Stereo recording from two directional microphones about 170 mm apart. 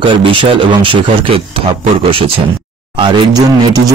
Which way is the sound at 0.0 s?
30° right (ahead or behind).